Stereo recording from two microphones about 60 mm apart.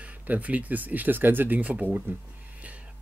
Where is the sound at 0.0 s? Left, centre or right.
Right.